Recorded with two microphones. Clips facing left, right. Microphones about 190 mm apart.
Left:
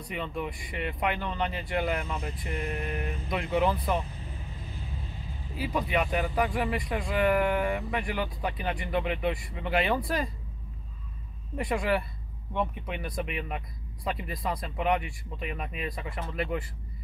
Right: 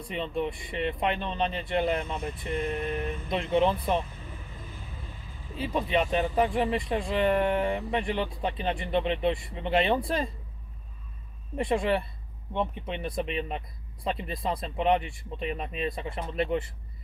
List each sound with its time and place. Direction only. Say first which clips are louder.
0.0 s speech: right 3 dB; 25° right (ahead or behind)
5.6 s speech: right 2 dB; 25° right (ahead or behind)
11.5 s speech: right 2 dB; 25° right (ahead or behind)